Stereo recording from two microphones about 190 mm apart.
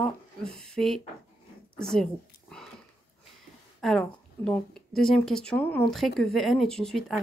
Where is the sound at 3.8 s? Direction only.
5° left (ahead or behind).